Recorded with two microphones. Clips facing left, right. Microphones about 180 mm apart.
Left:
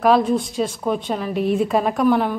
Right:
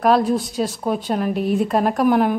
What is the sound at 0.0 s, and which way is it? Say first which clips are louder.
A woman's voice: even; centre (ahead or behind).